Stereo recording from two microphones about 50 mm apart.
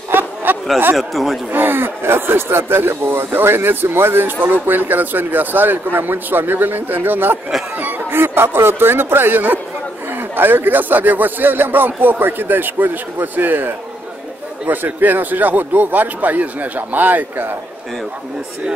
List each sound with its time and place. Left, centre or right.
0.1 s chatter: right
0.9 s speech: centre
1.5 s speech: right